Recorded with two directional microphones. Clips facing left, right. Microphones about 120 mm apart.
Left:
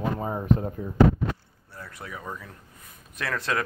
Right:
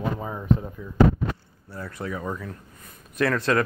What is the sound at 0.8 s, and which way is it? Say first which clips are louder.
Speech: left 4 dB; 45° left (ahead or behind).